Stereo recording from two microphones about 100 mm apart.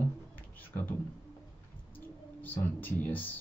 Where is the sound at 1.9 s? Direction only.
20° left (ahead or behind).